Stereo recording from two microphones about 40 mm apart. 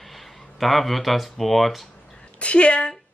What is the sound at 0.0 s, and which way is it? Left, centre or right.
Speech, centre.